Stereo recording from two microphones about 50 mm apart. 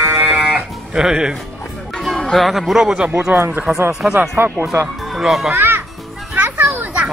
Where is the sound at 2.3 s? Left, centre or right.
Centre.